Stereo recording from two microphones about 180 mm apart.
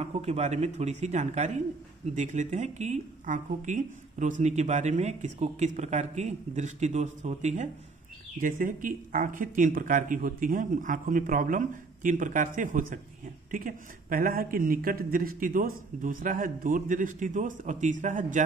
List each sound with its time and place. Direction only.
0.0 s speech: 35° right (ahead or behind)